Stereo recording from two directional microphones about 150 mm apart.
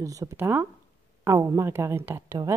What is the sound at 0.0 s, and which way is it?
A woman's voice, 20° right (ahead or behind).